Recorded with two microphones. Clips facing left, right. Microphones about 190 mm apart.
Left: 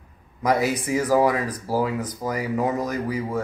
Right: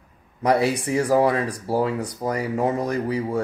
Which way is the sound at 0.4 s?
30° right (ahead or behind).